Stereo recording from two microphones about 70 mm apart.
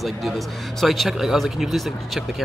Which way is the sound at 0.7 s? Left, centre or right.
Centre.